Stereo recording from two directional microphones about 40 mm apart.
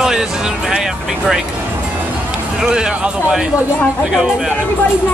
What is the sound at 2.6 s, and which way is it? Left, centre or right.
A man's voice, right.